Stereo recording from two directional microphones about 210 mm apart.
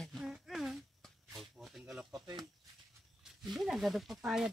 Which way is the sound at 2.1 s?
20° right (ahead or behind).